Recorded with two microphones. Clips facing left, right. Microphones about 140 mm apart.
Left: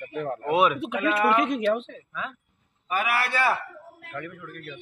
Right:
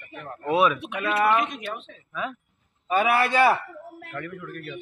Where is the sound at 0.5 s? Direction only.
20° left (ahead or behind).